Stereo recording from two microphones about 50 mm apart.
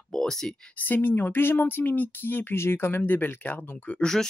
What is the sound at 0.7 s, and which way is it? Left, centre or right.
Speech, left.